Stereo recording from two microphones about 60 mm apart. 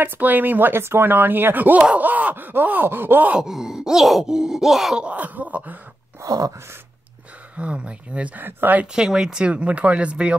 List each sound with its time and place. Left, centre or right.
0.0 s speech: right
3.3 s speech: centre
4.9 s speech: right
6.2 s a sound: right
7.5 s speech: centre
8.5 s speech: right
8.9 s speech: centre